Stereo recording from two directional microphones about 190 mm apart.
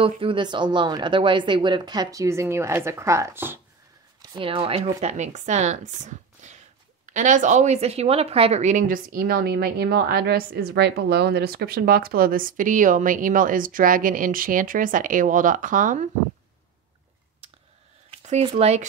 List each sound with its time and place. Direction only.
0.0 s speech: 25° right (ahead or behind)
4.2 s speech: 25° right (ahead or behind); by 16.1 s 40° right (ahead or behind)
18.1 s speech: 35° right (ahead or behind)